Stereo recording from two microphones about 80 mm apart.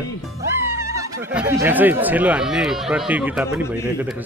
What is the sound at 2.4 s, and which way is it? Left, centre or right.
Speech, centre.